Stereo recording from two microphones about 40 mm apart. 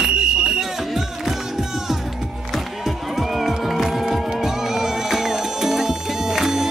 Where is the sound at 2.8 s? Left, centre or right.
Centre.